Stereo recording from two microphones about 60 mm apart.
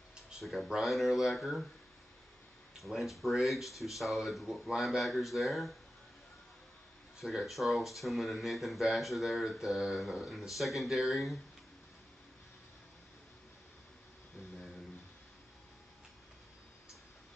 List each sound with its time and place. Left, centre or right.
0.4 s speech: centre
2.8 s speech: centre
7.2 s speech: centre